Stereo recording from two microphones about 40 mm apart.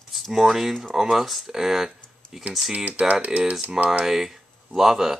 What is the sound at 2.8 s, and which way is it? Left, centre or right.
Speech, right.